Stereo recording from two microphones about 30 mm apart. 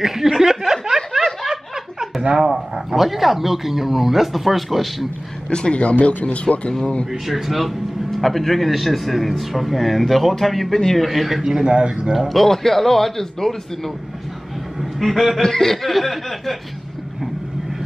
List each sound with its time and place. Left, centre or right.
0.0 s chuckle: centre
1.1 s snicker: centre
2.3 s speech: centre
5.5 s speech: left
6.5 s speech: centre
8.1 s speech: centre
10.7 s a man's voice: centre
11.1 s speech: centre
11.4 s speech: right
12.3 s a man's voice: centre
15.0 s speech: centre
15.4 s speech: centre